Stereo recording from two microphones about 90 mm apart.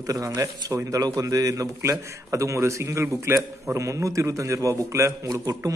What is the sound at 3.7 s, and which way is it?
A man's voice, 35° right (ahead or behind).